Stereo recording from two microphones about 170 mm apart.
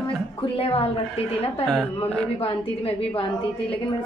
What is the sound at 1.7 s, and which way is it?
Speech, 5° left (ahead or behind).